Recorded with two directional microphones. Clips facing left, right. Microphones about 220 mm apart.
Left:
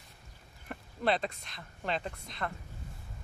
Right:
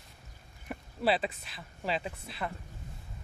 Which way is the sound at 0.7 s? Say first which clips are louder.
Right 1 dB; 5° right (ahead or behind).